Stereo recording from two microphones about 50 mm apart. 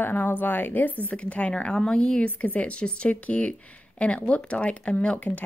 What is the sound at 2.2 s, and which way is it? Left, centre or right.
Speech, left.